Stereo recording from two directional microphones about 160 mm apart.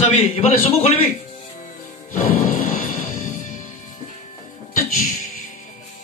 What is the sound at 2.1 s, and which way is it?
Music, 55° left (ahead or behind).